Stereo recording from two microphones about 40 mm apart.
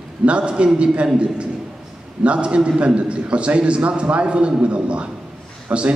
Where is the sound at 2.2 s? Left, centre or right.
Right.